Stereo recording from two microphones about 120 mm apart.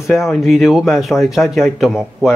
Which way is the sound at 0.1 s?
Centre (ahead or behind).